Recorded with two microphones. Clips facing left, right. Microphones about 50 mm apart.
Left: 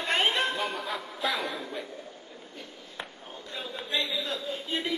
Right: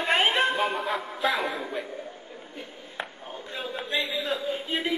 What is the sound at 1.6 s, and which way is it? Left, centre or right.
Chuckle, centre.